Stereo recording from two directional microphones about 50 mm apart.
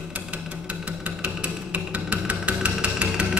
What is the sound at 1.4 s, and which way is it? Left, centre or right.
Music, right.